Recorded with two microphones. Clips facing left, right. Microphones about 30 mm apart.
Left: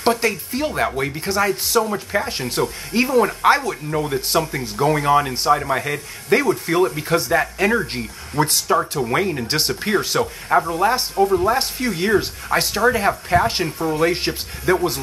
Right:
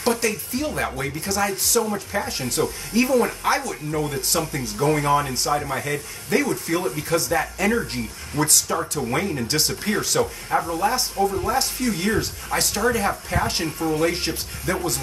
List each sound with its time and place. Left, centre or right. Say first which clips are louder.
0.0 s speech: left 3 dB; left
4.0 s speech: left 5 dB; centre